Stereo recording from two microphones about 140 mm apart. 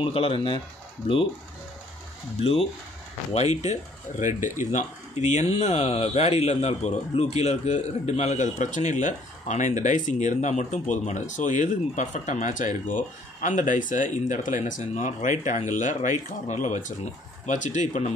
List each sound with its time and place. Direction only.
0.0 s speech: 40° left (ahead or behind)
3.3 s speech: 50° left (ahead or behind)